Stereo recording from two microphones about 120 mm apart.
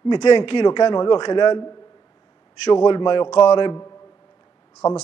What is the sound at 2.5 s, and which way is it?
A man's voice, 50° left (ahead or behind).